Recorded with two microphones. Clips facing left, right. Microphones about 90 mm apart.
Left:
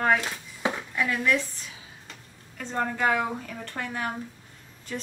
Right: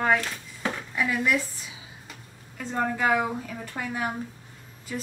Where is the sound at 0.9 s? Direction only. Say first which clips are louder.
Right 1 dB; 10° right (ahead or behind).